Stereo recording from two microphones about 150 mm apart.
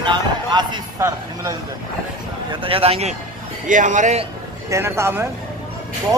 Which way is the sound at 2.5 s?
35° right (ahead or behind).